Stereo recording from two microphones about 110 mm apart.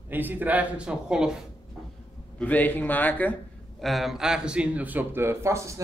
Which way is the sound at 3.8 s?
Centre (ahead or behind).